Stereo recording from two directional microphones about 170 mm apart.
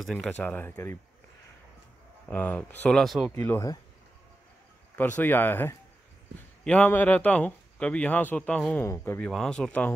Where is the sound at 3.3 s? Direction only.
15° left (ahead or behind).